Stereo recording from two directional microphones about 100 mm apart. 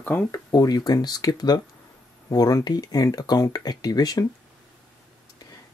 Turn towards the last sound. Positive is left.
turn(degrees=40)  # may be behind; listen again after turning